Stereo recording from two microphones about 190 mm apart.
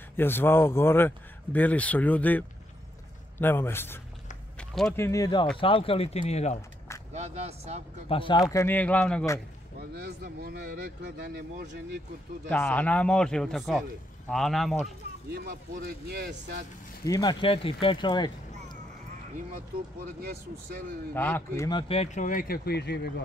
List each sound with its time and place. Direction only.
0.1 s speech: 10° left (ahead or behind)
4.6 s a sound: 5° left (ahead or behind)
4.9 s speech: 15° left (ahead or behind); by 6.6 s 35° left (ahead or behind)
7.2 s speech: 35° right (ahead or behind)
8.1 s speech: 25° left (ahead or behind)
9.8 s speech: 55° right (ahead or behind)
12.4 s speech: 10° left (ahead or behind)
16.1 s speech: 65° right (ahead or behind)
17.0 s speech: 20° left (ahead or behind)
20.2 s speech: 55° right (ahead or behind)
21.1 s speech: 10° left (ahead or behind)
21.6 s speech: 25° left (ahead or behind); by 23.2 s 60° left (ahead or behind)